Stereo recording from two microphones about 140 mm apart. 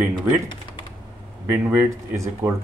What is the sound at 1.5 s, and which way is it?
Speech, 15° right (ahead or behind).